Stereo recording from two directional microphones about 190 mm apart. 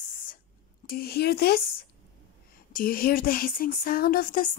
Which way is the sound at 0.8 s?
55° left (ahead or behind).